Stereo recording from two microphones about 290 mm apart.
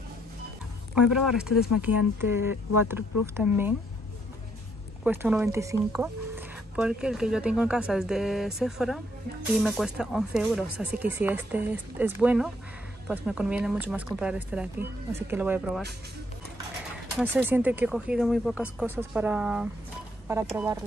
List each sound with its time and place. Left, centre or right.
1.1 s speech: centre
2.5 s speech: left
2.9 s speech: centre
5.0 s speech: centre
17.2 s speech: centre